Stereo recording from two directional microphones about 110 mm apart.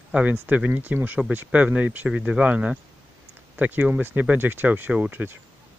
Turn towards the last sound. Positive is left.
turn(degrees=-15)  # may be behind; listen again after turning